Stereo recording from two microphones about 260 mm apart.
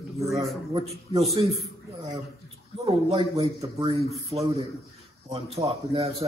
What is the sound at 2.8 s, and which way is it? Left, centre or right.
Speech, right.